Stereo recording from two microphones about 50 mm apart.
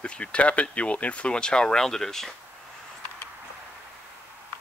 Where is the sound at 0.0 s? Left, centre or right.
Left.